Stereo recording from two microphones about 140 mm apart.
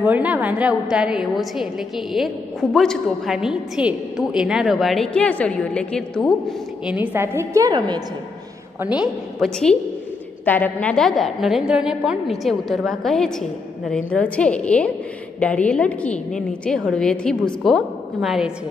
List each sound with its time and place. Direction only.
0.0 s a woman's voice: 10° right (ahead or behind); by 6.3 s 5° left (ahead or behind)
6.9 s a woman's voice: 15° right (ahead or behind)
8.8 s a woman's voice: 5° right (ahead or behind)
10.4 s a woman's voice: 10° left (ahead or behind)